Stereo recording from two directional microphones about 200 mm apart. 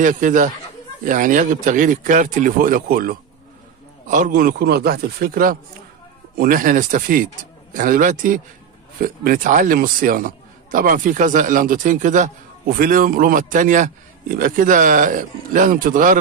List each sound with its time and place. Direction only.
0.0 s a man's voice: 40° right (ahead or behind)